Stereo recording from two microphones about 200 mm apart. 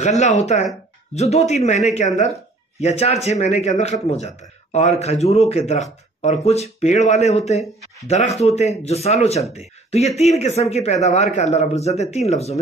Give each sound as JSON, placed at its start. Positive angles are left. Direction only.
{"t": 0.0, "sound": "speech", "side_deg": 35}